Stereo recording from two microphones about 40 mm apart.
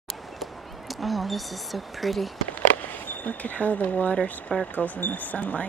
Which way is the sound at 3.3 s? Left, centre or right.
Left.